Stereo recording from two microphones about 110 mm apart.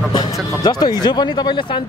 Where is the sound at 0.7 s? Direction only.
40° left (ahead or behind).